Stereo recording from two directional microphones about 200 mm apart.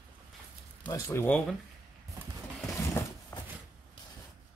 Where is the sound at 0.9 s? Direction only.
15° left (ahead or behind).